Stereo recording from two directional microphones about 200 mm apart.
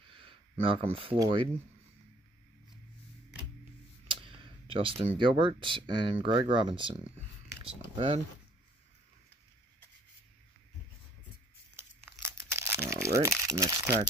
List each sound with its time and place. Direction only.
0.1 s a sound: 25° right (ahead or behind)
1.1 s speech: 20° right (ahead or behind)
4.1 s a sound: 25° right (ahead or behind)
5.1 s speech: 25° right (ahead or behind)
12.2 s crumpling: 15° right (ahead or behind)
13.5 s speech: 15° right (ahead or behind)